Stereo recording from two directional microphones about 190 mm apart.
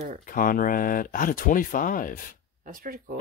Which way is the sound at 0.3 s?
45° left (ahead or behind).